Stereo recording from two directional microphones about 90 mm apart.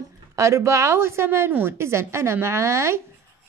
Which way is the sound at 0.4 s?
35° right (ahead or behind).